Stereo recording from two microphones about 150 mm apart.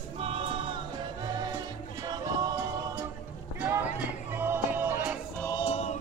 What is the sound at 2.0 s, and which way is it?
Music, 25° right (ahead or behind).